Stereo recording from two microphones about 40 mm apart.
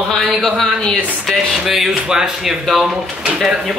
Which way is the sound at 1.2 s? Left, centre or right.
Centre.